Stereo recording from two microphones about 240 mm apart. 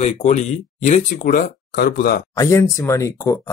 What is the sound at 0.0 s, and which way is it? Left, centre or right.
Speech, left.